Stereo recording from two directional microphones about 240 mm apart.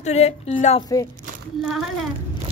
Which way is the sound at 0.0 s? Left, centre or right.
Left.